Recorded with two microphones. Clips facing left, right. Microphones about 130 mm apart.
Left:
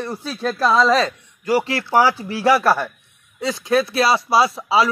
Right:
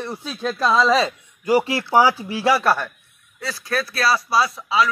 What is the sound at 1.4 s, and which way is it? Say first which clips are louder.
Speech: right 1 dB; 15° right (ahead or behind).